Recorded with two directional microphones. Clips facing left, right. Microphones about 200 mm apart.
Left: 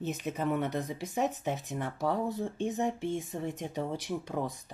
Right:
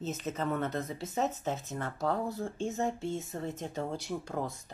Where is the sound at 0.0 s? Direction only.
15° left (ahead or behind).